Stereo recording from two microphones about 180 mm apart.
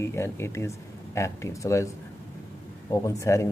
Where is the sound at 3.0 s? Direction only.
15° left (ahead or behind).